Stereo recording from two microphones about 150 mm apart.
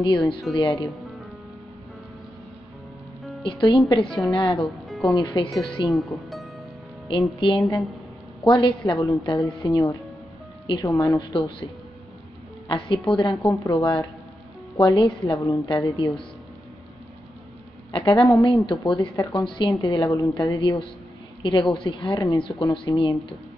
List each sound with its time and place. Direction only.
0.0 s a woman's voice: 30° left (ahead or behind)
0.7 s music: centre (ahead or behind)
3.4 s a woman's voice: 35° left (ahead or behind)
4.8 s music: centre (ahead or behind)
5.1 s a woman's voice: 30° left (ahead or behind)
5.9 s speech: centre (ahead or behind)
7.1 s a woman's voice: 35° left (ahead or behind)
12.6 s a woman's voice: 35° left (ahead or behind)
17.9 s a woman's voice: 35° left (ahead or behind)